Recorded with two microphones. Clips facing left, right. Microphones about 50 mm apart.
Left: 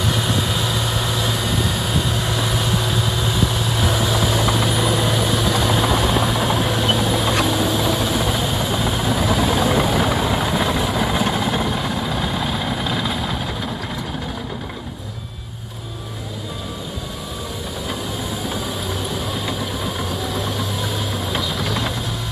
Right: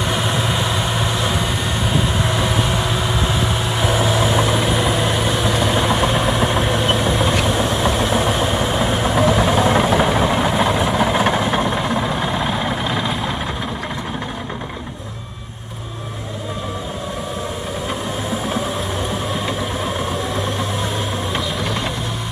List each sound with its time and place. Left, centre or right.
0.0 s vehicle: centre
19.4 s vehicle: centre